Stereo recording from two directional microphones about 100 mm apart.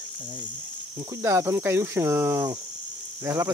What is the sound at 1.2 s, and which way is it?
Speech, 30° right (ahead or behind).